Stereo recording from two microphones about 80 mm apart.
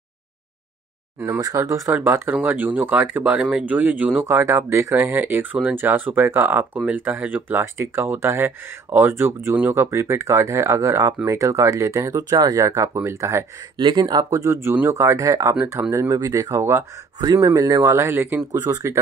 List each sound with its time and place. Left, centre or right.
1.4 s speech: right
1.9 s speech: right
4.2 s speech: right
13.7 s speech: right
14.3 s speech: right